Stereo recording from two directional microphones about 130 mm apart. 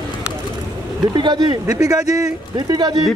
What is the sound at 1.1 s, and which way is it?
Speech, 35° right (ahead or behind).